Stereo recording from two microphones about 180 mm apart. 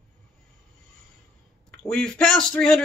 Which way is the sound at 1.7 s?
5° left (ahead or behind).